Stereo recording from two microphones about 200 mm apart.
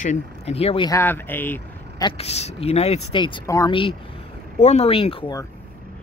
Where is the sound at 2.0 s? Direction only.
30° left (ahead or behind).